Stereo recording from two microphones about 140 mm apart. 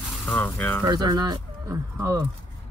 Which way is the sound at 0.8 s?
30° right (ahead or behind).